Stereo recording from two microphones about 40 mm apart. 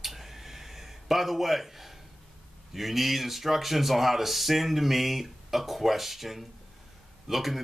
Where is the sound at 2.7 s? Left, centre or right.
Centre.